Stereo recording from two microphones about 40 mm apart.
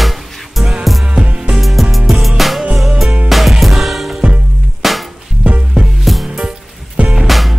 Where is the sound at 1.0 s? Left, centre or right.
Right.